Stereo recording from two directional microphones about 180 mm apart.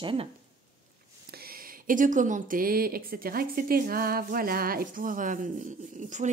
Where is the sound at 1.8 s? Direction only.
45° right (ahead or behind).